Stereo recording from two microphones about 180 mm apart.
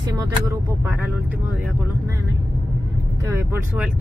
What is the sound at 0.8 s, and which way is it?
Speech, 10° right (ahead or behind).